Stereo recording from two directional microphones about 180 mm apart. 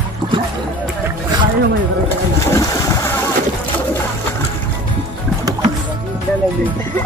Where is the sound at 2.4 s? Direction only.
20° left (ahead or behind).